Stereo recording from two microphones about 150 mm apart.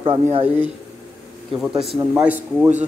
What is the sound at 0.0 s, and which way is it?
Speech, 40° right (ahead or behind).